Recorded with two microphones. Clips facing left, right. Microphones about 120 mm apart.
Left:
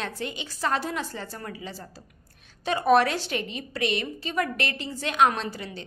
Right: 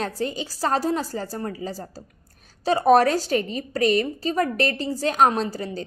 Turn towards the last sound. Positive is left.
turn(degrees=-40)  # may be behind; listen again after turning